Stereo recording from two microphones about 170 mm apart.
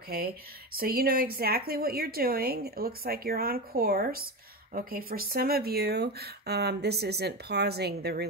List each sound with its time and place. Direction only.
0.7 s a woman's voice: 60° right (ahead or behind)